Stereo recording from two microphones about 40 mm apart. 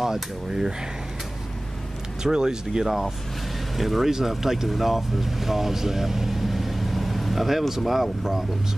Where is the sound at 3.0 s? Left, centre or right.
Centre.